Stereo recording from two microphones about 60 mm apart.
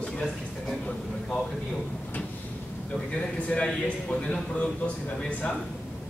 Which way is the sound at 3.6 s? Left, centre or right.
Centre.